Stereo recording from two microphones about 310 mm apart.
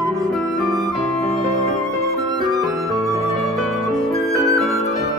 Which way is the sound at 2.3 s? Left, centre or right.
Centre.